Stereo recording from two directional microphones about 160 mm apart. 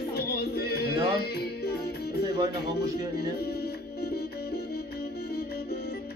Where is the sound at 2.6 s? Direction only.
90° left.